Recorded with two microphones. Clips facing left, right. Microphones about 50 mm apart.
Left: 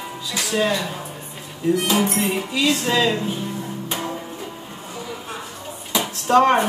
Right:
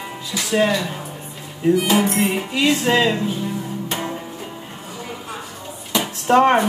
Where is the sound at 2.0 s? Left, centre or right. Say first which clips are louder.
Right 2 dB; right.